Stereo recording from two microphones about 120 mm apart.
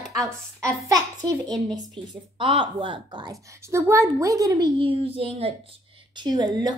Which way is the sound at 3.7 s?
25° right (ahead or behind).